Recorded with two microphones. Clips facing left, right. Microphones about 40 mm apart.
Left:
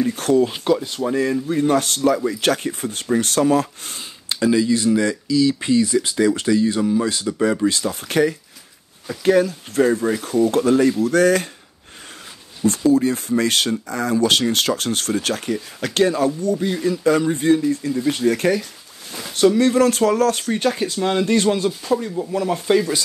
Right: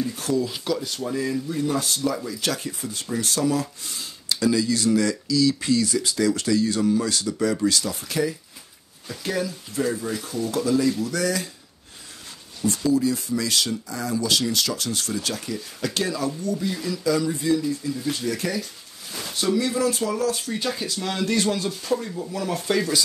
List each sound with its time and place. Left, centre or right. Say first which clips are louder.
0.0 s speech: left 7 dB; left
0.5 s speech: left 7 dB; left
1.2 s speech: left 6 dB; left
4.0 s speech: left 3 dB; left
8.0 s speech: left 7 dB; left
12.6 s speech: left 5 dB; left
20.7 s speech: left 8 dB; left
21.6 s speech: left 5 dB; centre